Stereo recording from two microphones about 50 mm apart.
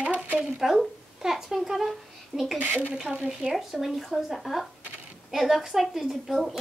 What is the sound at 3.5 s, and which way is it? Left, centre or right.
Speech, centre.